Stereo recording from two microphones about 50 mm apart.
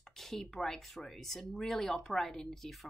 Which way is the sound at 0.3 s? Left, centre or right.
Centre.